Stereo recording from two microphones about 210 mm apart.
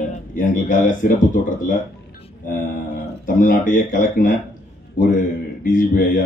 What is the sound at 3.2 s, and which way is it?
Speech, 40° left (ahead or behind).